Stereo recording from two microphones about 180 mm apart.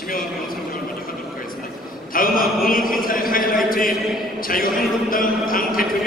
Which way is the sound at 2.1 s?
50° left (ahead or behind).